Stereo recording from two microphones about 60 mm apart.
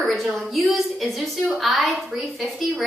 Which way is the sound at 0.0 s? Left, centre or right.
Centre.